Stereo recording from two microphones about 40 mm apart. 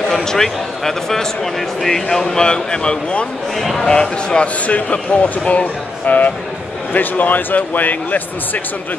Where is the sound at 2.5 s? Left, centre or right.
Left.